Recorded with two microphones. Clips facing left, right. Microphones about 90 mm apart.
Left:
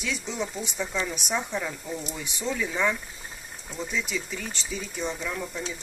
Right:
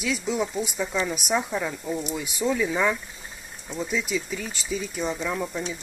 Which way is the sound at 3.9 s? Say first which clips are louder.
Right 3 dB; 5° right (ahead or behind).